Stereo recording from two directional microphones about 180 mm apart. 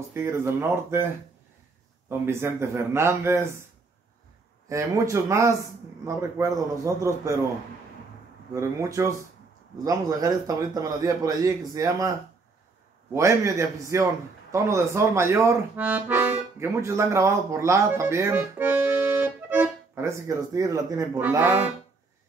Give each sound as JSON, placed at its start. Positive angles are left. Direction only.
{"t": 0.1, "sound": "a man's voice", "side_deg": -15}
{"t": 2.0, "sound": "a man's voice", "side_deg": -15}
{"t": 4.6, "sound": "a man's voice", "side_deg": -15}
{"t": 8.5, "sound": "a man's voice", "side_deg": -15}